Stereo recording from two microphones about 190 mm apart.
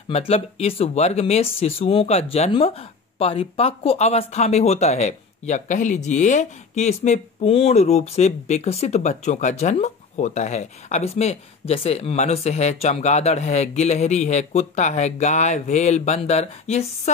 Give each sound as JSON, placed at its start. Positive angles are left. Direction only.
{"t": 0.1, "sound": "speech", "side_deg": 30}